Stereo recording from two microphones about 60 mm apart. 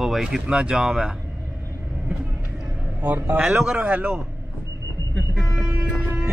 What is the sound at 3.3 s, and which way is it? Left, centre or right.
Music, centre.